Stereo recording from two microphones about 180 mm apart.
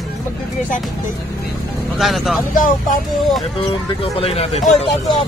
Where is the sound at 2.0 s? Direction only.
Centre (ahead or behind).